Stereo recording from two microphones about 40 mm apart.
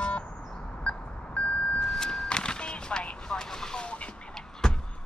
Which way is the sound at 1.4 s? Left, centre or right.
Left.